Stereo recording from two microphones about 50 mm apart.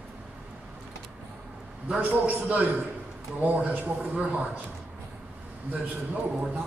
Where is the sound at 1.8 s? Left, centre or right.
Right.